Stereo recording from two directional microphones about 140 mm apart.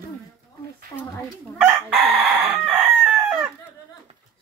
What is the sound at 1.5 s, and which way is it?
Chicken, 5° right (ahead or behind).